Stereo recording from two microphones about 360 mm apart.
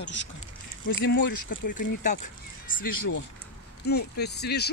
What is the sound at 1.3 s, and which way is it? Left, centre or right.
Speech, left.